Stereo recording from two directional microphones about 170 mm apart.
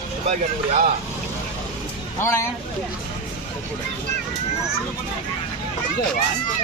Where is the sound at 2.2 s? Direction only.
15° left (ahead or behind).